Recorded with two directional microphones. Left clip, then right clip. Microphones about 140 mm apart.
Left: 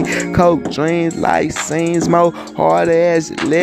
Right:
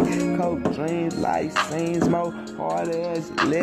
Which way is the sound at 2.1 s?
55° left (ahead or behind).